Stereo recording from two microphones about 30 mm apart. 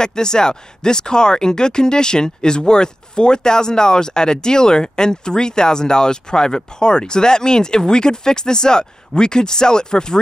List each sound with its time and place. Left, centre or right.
0.0 s speech: left